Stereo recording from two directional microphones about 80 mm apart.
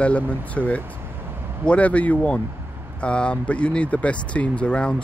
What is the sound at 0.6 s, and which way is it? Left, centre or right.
Speech, centre.